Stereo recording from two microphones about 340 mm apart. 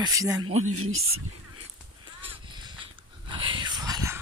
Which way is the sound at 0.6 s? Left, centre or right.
Right.